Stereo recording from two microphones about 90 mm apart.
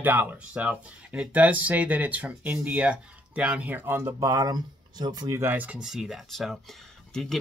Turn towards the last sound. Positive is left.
turn(degrees=5)  # may be behind; listen again after turning